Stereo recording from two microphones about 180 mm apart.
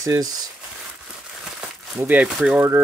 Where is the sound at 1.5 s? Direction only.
5° right (ahead or behind).